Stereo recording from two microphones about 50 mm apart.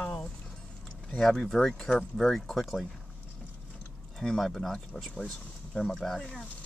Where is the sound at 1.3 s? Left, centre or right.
Centre.